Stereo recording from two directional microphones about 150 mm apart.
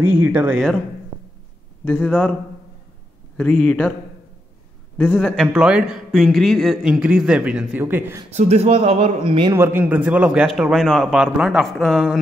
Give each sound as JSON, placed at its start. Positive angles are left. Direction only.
{"t": 0.0, "sound": "speech", "side_deg": -10}
{"t": 1.9, "sound": "a man's voice", "side_deg": 10}
{"t": 3.3, "sound": "a man's voice", "side_deg": 5}
{"t": 4.9, "sound": "a man's voice", "side_deg": 10}
{"t": 5.4, "sound": "a man's voice", "side_deg": -5}
{"t": 8.3, "sound": "speech", "side_deg": -45}
{"t": 9.5, "sound": "a man's voice", "side_deg": -15}